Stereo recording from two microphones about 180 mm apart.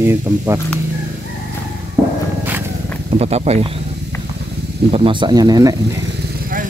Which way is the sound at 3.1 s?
35° right (ahead or behind).